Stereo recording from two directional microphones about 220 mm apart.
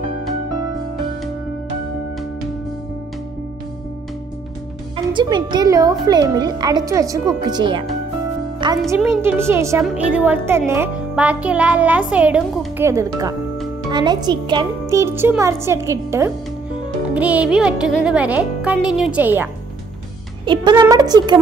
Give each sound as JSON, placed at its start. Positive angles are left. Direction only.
{"t": 4.9, "sound": "speech", "side_deg": -20}
{"t": 20.4, "sound": "speech", "side_deg": -20}